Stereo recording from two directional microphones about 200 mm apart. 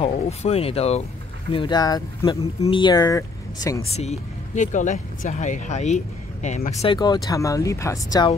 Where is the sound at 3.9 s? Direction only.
35° left (ahead or behind).